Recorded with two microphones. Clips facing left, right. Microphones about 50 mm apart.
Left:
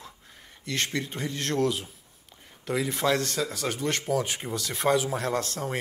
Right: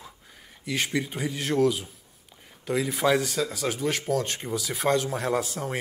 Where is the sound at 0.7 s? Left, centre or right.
Centre.